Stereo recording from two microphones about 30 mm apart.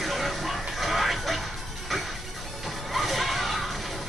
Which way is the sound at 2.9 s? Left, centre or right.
Centre.